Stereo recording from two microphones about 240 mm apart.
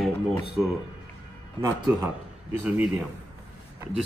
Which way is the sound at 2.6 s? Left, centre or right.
Centre.